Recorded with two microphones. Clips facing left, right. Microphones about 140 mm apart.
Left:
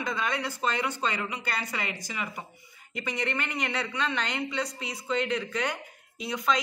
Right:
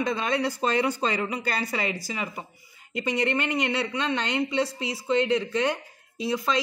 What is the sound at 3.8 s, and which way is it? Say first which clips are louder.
Speech: right 3 dB; 25° right (ahead or behind).